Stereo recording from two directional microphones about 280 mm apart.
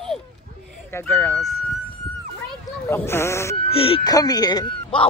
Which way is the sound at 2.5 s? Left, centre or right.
Centre.